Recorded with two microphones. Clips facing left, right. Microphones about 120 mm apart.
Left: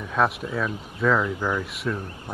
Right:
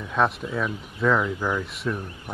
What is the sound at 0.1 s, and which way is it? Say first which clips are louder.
Speech: even; centre (ahead or behind).